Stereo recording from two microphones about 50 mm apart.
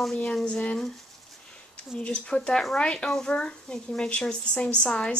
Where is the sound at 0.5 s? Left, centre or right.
Left.